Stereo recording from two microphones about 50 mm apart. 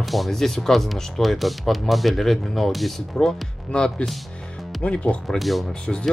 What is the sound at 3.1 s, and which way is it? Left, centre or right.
Speech, centre.